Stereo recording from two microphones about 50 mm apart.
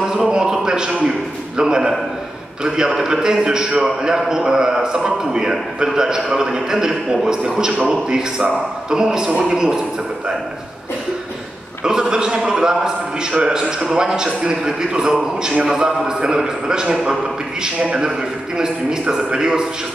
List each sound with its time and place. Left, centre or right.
0.3 s a man's voice: centre
11.8 s a man's voice: centre